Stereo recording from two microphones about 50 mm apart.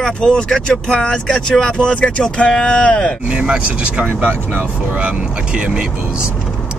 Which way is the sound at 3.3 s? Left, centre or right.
Centre.